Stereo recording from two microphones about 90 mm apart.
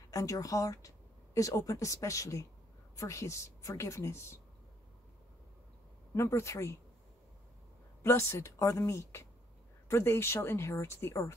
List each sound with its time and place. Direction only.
0.1 s a woman's voice: 40° left (ahead or behind)
6.1 s a woman's voice: 30° left (ahead or behind)
8.0 s a woman's voice: 30° left (ahead or behind)